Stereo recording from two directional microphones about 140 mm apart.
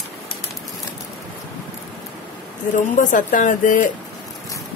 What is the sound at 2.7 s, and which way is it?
A woman's voice, 70° left (ahead or behind).